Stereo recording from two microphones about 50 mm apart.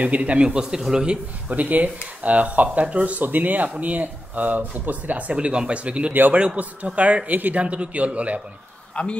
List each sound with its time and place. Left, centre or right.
0.0 s speech: right
0.4 s a man's voice: centre
1.5 s speech: right
5.3 s speech: right
9.0 s speech: left